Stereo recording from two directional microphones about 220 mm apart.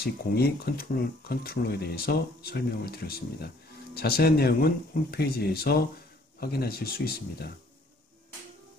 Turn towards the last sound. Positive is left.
turn(degrees=45)  # may be behind; listen again after turning